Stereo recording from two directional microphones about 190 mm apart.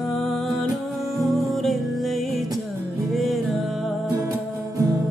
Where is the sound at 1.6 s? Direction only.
Centre (ahead or behind).